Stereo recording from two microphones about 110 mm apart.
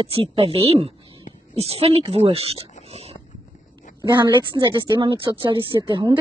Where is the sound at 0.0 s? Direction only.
60° right (ahead or behind).